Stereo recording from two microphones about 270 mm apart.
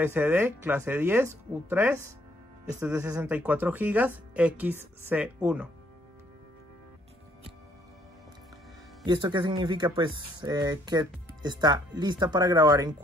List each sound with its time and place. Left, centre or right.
0.0 s speech: centre
9.0 s speech: centre